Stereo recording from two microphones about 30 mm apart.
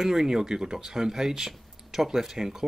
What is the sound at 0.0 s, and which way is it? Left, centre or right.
Speech, centre.